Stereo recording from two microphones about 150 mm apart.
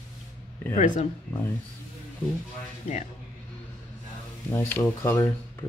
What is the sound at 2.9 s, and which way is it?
Speech, 45° left (ahead or behind).